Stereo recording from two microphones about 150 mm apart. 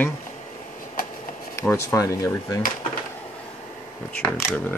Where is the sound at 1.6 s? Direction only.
15° left (ahead or behind).